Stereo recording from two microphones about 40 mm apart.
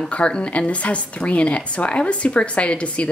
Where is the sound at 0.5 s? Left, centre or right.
Left.